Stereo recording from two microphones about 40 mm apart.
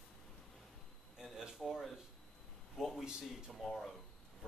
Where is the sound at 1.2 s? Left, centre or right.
Centre.